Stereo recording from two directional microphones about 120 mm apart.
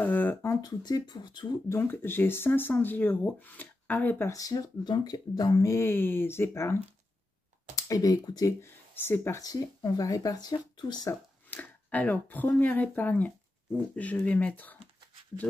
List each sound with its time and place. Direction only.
0.0 s a sound: 15° left (ahead or behind)
0.6 s speech: 30° left (ahead or behind)
1.7 s speech: 20° left (ahead or behind)
4.3 s speech: 30° left (ahead or behind)
8.9 s speech: 20° left (ahead or behind); by 11.1 s 35° left (ahead or behind)
11.5 s speech: 15° left (ahead or behind)